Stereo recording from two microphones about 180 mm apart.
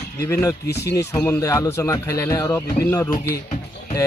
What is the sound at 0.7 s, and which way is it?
Speech, 65° left (ahead or behind).